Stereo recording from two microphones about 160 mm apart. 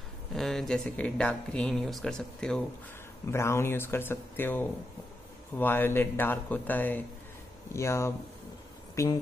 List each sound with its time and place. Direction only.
0.3 s speech: centre (ahead or behind)
3.3 s speech: 15° left (ahead or behind)